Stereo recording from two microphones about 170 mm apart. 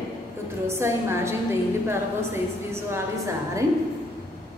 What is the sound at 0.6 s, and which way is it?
A woman's voice, 15° right (ahead or behind).